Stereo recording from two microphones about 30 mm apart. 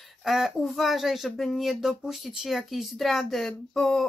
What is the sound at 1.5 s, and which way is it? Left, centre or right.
Speech, centre.